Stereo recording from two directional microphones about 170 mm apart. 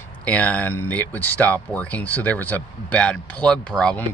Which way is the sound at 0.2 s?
10° left (ahead or behind).